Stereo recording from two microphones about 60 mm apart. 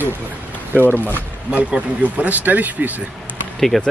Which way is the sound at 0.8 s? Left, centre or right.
Left.